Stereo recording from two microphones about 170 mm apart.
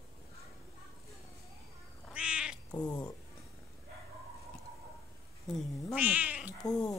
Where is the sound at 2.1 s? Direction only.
5° right (ahead or behind).